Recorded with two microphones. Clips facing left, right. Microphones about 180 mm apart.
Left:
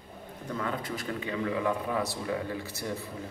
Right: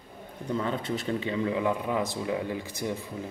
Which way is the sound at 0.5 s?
25° right (ahead or behind).